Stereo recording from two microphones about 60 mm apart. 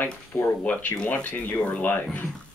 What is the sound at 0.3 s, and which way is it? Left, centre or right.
A man's voice, left.